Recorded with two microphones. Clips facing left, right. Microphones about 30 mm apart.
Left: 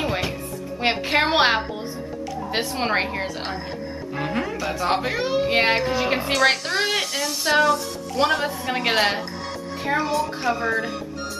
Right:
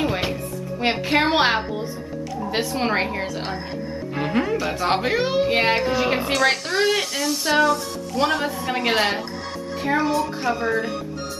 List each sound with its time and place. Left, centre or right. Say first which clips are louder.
0.7 s a woman's voice: even; centre
4.1 s speech: right 4 dB; centre
5.5 s a woman's voice: even; centre